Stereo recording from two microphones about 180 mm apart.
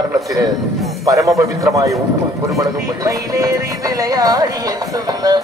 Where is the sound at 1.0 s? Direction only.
15° right (ahead or behind).